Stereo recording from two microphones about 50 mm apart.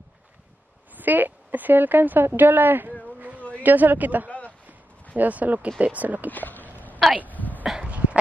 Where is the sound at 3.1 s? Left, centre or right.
Right.